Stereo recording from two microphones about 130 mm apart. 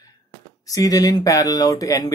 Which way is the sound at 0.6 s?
30° left (ahead or behind).